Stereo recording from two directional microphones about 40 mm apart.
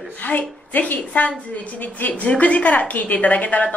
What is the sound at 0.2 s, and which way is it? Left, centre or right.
A woman's voice, left.